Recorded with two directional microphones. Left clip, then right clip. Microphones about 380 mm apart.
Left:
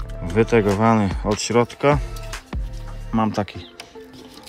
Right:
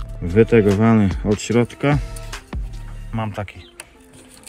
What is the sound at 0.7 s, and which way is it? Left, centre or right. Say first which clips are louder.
Speech: even; right.